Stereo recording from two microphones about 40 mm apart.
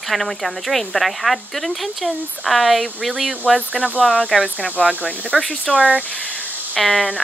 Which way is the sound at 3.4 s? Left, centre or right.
Centre.